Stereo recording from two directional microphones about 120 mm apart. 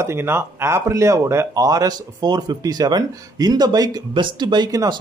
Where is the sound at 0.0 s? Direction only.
20° right (ahead or behind).